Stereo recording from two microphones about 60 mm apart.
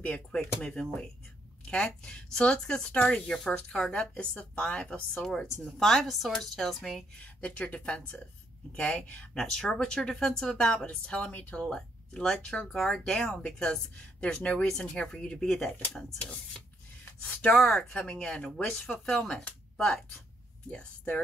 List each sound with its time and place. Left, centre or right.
0.0 s speech: centre
3.3 s speech: centre
7.2 s speech: left
9.4 s speech: centre; by 17.6 s left
17.6 s speech: centre